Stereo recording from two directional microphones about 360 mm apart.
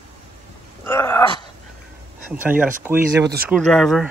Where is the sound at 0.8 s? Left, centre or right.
Centre.